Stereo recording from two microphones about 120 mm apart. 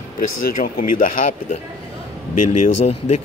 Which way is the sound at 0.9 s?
90° left.